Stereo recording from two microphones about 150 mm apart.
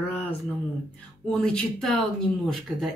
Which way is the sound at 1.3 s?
5° left (ahead or behind).